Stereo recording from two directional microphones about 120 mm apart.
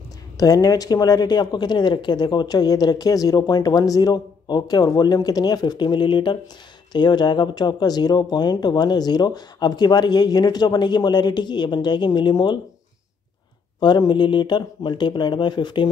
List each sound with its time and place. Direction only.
0.4 s speech: 30° left (ahead or behind)
13.7 s speech: 40° left (ahead or behind)